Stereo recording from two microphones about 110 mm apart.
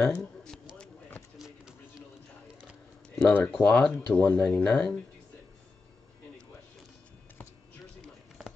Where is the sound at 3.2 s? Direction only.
15° left (ahead or behind).